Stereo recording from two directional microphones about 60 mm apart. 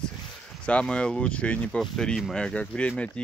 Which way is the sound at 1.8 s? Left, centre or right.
Centre.